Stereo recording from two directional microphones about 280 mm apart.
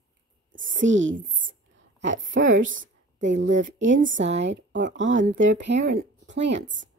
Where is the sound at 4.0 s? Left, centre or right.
Right.